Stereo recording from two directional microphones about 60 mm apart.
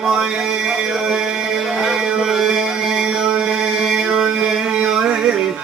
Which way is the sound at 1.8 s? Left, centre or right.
Centre.